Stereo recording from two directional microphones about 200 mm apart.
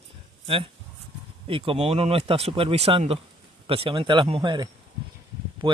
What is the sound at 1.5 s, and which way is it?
Speech, 25° right (ahead or behind).